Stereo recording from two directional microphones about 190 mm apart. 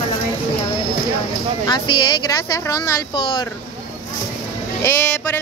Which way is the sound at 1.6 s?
25° left (ahead or behind).